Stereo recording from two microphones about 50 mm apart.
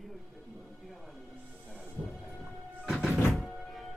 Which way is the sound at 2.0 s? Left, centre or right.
Right.